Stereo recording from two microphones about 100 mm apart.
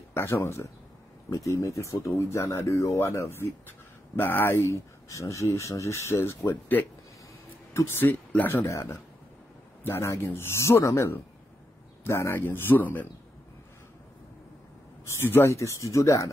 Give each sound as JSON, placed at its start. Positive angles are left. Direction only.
{"t": 0.1, "sound": "speech", "side_deg": 25}
{"t": 8.6, "sound": "speech", "side_deg": 30}
{"t": 15.0, "sound": "speech", "side_deg": 25}